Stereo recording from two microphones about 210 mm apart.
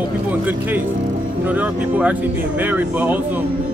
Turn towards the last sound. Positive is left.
turn(degrees=-10)  # may be behind; listen again after turning